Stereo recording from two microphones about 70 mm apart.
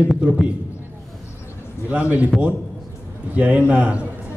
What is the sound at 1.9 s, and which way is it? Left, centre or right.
Speech, right.